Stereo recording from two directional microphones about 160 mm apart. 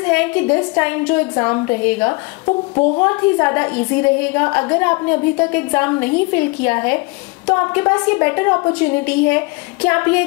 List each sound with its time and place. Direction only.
0.0 s a woman's voice: 10° left (ahead or behind)